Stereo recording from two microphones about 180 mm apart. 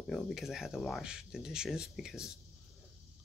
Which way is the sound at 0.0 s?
Centre (ahead or behind).